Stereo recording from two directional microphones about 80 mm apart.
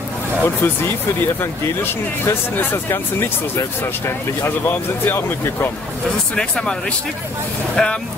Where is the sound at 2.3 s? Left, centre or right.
Left.